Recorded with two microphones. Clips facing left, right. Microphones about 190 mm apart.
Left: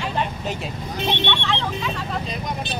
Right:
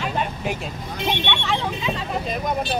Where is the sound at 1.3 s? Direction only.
10° right (ahead or behind).